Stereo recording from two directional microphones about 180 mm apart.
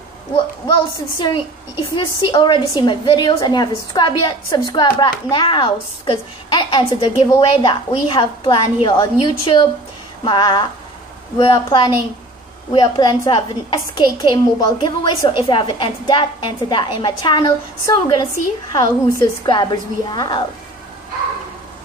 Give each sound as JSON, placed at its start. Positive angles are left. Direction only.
{"t": 0.7, "sound": "a woman's voice", "side_deg": 25}